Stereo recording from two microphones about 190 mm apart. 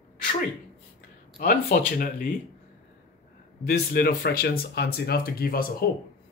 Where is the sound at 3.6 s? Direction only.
55° left (ahead or behind).